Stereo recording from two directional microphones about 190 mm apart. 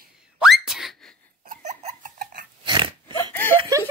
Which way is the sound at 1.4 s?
40° right (ahead or behind).